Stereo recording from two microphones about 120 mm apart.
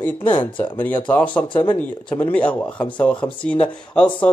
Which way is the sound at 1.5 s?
45° left (ahead or behind).